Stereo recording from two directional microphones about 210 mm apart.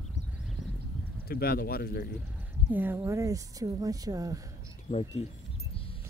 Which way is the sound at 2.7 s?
10° right (ahead or behind).